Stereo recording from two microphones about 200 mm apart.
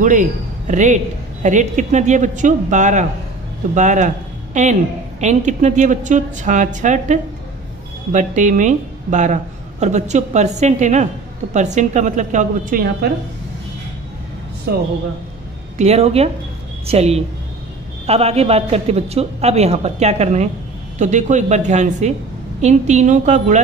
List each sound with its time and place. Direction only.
0.0 s a man's voice: 40° right (ahead or behind)
14.7 s a woman's voice: 50° right (ahead or behind)
15.8 s a man's voice: 30° right (ahead or behind)